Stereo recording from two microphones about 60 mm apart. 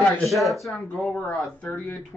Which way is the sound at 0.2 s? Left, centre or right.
Centre.